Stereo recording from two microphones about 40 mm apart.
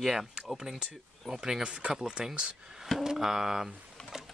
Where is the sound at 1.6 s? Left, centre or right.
Right.